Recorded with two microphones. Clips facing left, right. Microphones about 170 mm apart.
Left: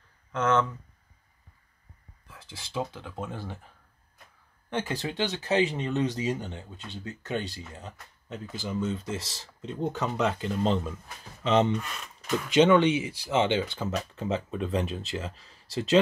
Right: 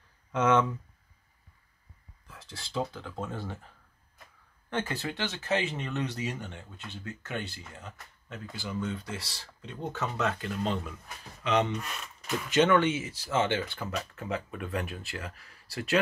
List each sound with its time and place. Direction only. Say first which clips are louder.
0.3 s speech: right 1 dB; 10° right (ahead or behind)
2.2 s a sound: even; centre (ahead or behind)
2.8 s speech: even; 15° left (ahead or behind)
4.6 s speech: left 2 dB; 15° left (ahead or behind)